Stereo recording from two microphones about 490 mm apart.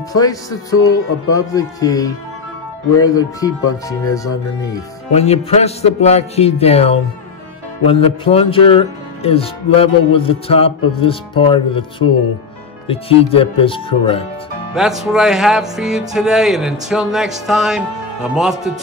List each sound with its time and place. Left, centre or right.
0.1 s speech: centre
0.7 s speech: left
1.3 s speech: centre
14.7 s music: centre